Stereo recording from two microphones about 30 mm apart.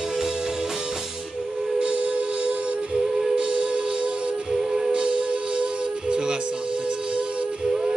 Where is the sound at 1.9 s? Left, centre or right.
Right.